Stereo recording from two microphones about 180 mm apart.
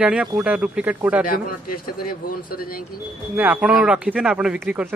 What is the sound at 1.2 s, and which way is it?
A man's voice, 50° left (ahead or behind).